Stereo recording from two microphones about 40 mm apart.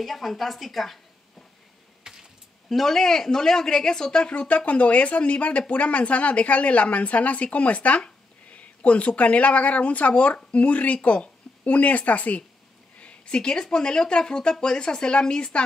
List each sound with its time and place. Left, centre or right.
0.0 s a woman's voice: centre
2.1 s a sound: centre
2.7 s speech: centre
4.3 s speech: left
13.0 s speech: left